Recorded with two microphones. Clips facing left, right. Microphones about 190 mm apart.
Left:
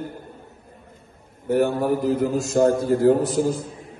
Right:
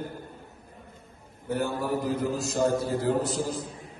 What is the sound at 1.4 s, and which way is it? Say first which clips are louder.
Speech: left 9 dB; 70° left (ahead or behind).